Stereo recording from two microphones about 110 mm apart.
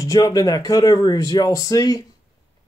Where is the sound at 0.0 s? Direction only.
35° left (ahead or behind).